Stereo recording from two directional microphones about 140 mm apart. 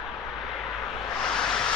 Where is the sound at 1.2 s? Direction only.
5° left (ahead or behind).